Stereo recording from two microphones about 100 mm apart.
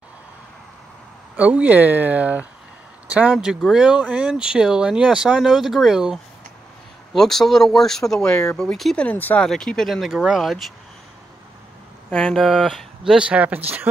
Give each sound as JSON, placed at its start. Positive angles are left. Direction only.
{"t": 1.3, "sound": "speech", "side_deg": -15}
{"t": 7.2, "sound": "speech", "side_deg": 5}
{"t": 9.0, "sound": "speech", "side_deg": 15}
{"t": 12.1, "sound": "speech", "side_deg": 10}
{"t": 13.0, "sound": "speech", "side_deg": -10}